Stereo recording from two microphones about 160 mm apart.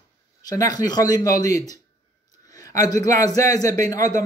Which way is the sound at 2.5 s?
20° left (ahead or behind).